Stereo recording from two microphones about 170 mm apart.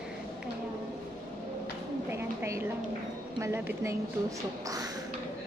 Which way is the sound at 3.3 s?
15° right (ahead or behind).